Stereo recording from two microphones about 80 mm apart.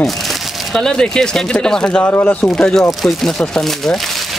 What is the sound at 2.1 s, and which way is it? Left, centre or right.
Speech, left.